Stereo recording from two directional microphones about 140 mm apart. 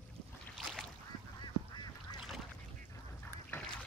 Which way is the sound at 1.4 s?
30° left (ahead or behind).